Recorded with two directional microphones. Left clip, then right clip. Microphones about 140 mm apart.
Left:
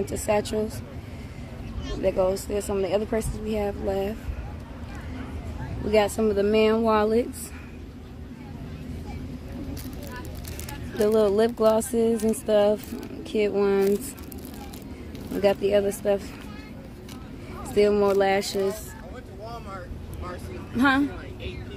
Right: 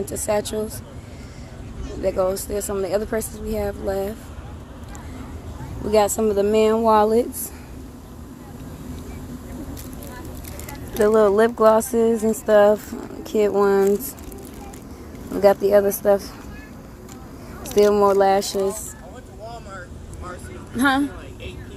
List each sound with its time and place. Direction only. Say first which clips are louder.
0.0 s speech: right 2 dB; centre (ahead or behind)
2.0 s speech: right 2 dB; 5° right (ahead or behind)
5.9 s speech: right 4 dB; 20° right (ahead or behind)
11.0 s speech: right 5 dB; 20° right (ahead or behind)
15.4 s speech: right 6 dB; 20° right (ahead or behind)
17.7 s speech: right 5 dB; 15° right (ahead or behind)
20.2 s a sound: right 1 dB; 15° right (ahead or behind)